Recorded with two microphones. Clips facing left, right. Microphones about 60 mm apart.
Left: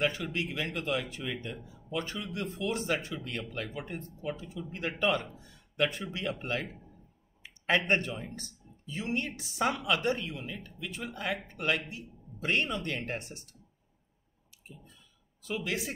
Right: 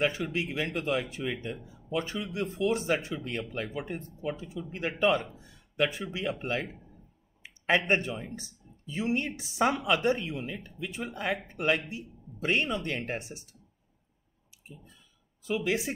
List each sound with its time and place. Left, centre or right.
0.2 s speech: centre
0.7 s speech: centre
2.7 s speech: centre
3.2 s speech: centre
3.5 s speech: centre
7.4 s a sound: centre
7.8 s speech: centre
13.0 s speech: centre
15.4 s speech: centre